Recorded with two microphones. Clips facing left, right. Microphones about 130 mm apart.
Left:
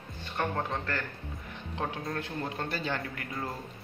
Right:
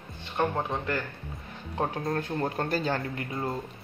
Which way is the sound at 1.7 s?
40° right (ahead or behind).